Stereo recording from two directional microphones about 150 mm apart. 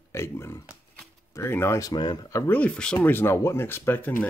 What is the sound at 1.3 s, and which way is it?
Speech, 15° left (ahead or behind).